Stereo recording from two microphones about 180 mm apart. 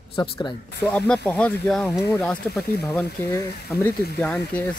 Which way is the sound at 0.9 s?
5° left (ahead or behind).